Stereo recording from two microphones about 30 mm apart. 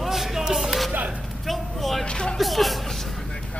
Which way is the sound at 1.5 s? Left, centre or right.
Centre.